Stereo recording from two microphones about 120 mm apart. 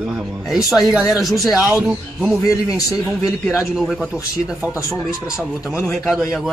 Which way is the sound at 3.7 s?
Centre (ahead or behind).